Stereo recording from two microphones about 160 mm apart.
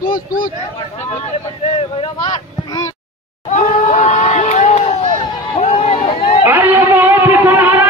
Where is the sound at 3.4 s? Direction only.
50° left (ahead or behind).